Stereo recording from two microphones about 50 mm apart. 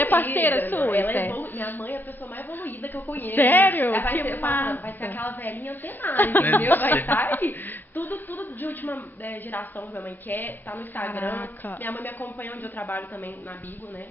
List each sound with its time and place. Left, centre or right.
0.0 s a woman's voice: left